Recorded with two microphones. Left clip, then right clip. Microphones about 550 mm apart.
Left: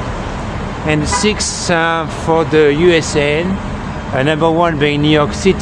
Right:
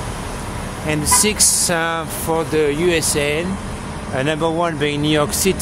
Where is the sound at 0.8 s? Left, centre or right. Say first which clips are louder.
Left 3 dB; right.